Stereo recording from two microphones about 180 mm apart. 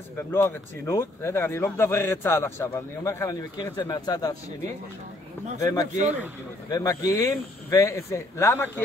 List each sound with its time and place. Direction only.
0.3 s a man's voice: 15° left (ahead or behind)
5.6 s a man's voice: 20° left (ahead or behind)